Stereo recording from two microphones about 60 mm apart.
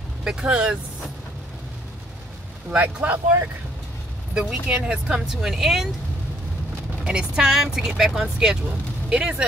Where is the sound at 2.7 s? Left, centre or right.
Right.